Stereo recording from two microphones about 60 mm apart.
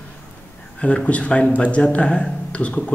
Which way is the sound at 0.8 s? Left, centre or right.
Left.